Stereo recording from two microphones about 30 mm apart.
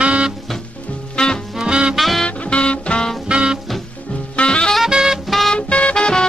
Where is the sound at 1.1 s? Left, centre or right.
Left.